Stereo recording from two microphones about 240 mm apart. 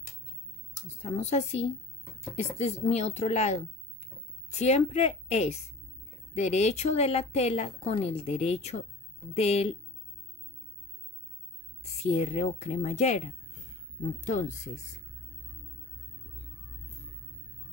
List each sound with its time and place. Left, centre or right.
1.0 s a woman's voice: left
12.0 s a woman's voice: left